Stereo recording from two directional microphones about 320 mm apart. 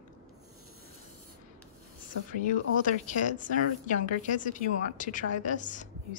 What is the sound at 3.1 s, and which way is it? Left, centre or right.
A woman's voice, left.